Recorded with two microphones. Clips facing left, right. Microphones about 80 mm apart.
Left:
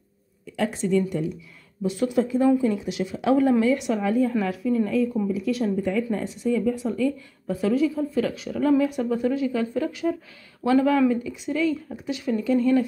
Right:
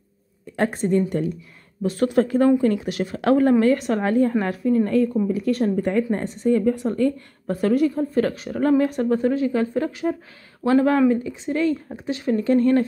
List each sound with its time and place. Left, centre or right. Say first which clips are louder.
0.6 s a woman's voice: right 2 dB; right
4.0 s speech: right 4 dB; right
4.3 s a woman's voice: right 3 dB; right
12.4 s a woman's voice: right 3 dB; right